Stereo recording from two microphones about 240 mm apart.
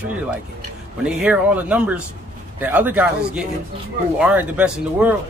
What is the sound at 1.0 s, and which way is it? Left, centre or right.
Speech, centre.